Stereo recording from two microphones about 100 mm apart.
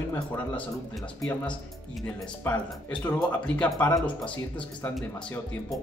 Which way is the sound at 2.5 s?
15° left (ahead or behind).